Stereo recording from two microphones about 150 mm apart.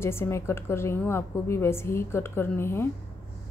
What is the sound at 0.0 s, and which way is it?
A woman's voice, 15° left (ahead or behind).